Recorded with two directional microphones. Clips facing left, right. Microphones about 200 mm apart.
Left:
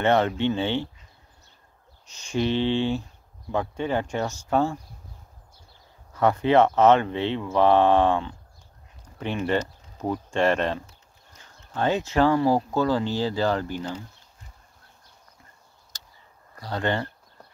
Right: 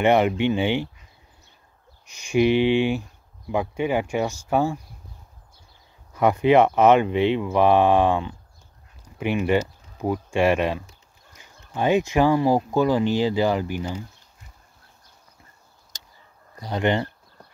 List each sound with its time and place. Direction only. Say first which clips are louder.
0.0 s speech: right 3 dB; 15° right (ahead or behind)
2.0 s speech: right 6 dB; 10° right (ahead or behind)
6.1 s speech: right 2 dB; 15° right (ahead or behind)
16.5 s speech: right 4 dB; 15° right (ahead or behind)